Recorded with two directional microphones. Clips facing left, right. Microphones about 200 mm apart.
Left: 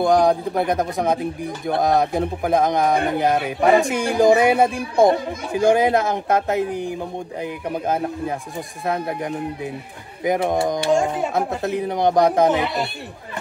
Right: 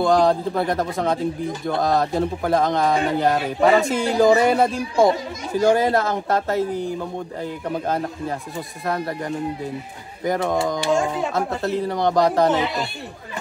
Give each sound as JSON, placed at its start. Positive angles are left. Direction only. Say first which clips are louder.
{"t": 0.0, "sound": "speech", "louder": "left 1 dB", "side_deg": 20}
{"t": 4.9, "sound": "speech", "louder": "left 2 dB", "side_deg": 55}
{"t": 5.7, "sound": "speech", "louder": "left 2 dB", "side_deg": 20}